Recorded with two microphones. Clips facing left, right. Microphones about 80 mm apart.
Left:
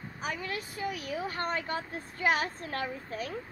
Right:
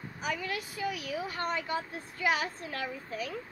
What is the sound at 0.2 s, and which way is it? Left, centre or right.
A woman's voice, left.